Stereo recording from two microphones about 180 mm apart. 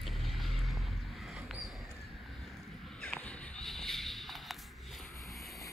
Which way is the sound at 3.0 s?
5° left (ahead or behind).